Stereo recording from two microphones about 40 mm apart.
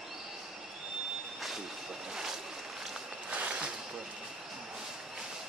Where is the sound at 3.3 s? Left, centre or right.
Right.